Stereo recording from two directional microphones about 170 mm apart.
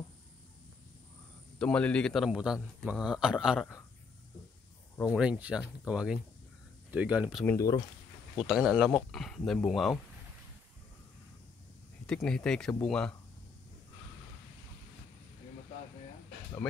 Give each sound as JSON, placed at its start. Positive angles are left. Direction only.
{"t": 1.6, "sound": "a man's voice", "side_deg": 5}
{"t": 5.0, "sound": "speech", "side_deg": -5}
{"t": 7.4, "sound": "speech", "side_deg": 20}
{"t": 8.4, "sound": "a man's voice", "side_deg": -5}
{"t": 12.1, "sound": "a man's voice", "side_deg": 5}